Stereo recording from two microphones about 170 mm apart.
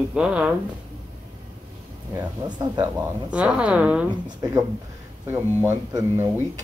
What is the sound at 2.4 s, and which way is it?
Speech, 25° right (ahead or behind).